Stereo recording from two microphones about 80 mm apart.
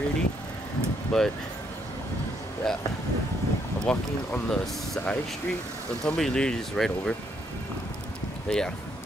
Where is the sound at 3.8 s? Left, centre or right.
Centre.